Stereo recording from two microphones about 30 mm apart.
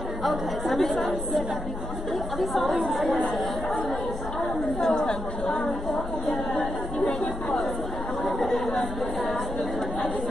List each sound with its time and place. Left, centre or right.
0.2 s speech: centre
4.7 s chatter: left
8.3 s chatter: centre